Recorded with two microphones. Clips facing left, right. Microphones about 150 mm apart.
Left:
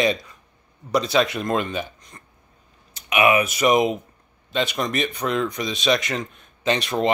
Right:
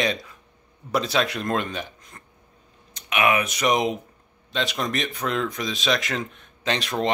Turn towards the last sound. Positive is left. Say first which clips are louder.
# left 3 dB
turn(degrees=0)  # may be behind; listen again after turning